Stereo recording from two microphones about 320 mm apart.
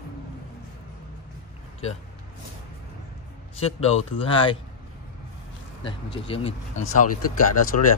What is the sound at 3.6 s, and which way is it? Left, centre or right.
Speech, centre.